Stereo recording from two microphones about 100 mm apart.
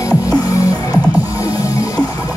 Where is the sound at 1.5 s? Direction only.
35° left (ahead or behind).